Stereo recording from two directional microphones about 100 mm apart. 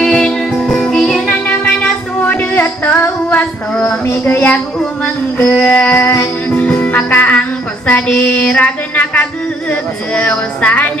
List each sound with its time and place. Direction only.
0.0 s music: 5° left (ahead or behind)
2.2 s music: 20° left (ahead or behind)
4.2 s a sound: 15° left (ahead or behind)
6.5 s music: 15° left (ahead or behind)